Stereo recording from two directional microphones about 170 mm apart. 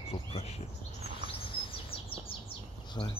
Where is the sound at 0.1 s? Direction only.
35° left (ahead or behind).